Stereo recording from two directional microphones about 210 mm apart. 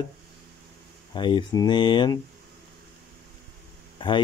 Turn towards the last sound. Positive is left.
turn(degrees=25)  # may be behind; listen again after turning